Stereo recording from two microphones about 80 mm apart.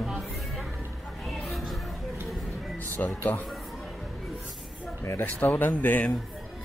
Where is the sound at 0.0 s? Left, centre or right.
Centre.